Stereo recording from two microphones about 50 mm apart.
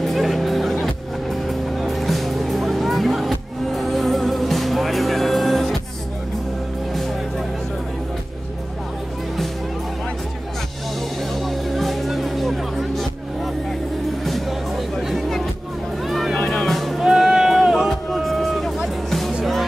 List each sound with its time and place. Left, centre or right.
0.0 s music: centre
11.3 s music: centre
14.2 s music: centre
17.0 s sheep: centre
17.8 s music: centre